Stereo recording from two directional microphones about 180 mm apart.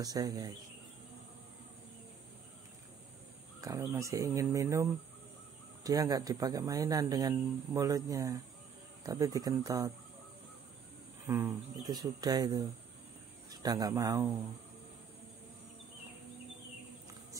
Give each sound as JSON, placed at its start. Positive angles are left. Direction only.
{"t": 0.0, "sound": "speech", "side_deg": -20}
{"t": 3.6, "sound": "speech", "side_deg": -15}
{"t": 5.9, "sound": "speech", "side_deg": -20}
{"t": 11.2, "sound": "speech", "side_deg": -20}